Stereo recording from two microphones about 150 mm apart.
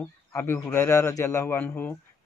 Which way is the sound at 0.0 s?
15° left (ahead or behind).